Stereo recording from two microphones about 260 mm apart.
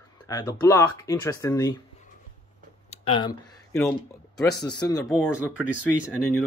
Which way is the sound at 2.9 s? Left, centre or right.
Centre.